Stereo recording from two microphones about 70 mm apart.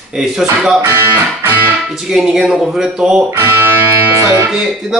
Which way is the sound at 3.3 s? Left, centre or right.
Right.